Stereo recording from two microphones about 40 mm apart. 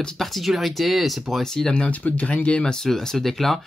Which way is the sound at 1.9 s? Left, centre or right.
Left.